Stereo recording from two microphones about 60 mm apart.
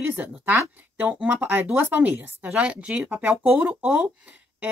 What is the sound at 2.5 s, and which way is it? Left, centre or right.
A woman's voice, centre.